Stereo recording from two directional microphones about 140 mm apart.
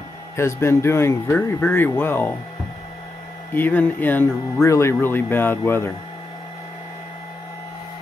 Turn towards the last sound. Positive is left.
turn(degrees=45)  # may be behind; listen again after turning